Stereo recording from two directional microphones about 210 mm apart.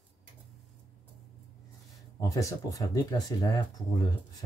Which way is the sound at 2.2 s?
15° left (ahead or behind).